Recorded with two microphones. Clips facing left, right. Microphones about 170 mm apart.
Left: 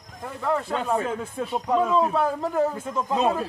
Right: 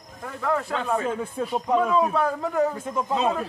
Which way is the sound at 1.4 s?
Centre (ahead or behind).